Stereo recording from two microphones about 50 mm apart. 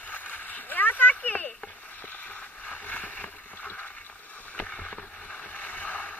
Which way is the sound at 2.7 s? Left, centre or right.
Left.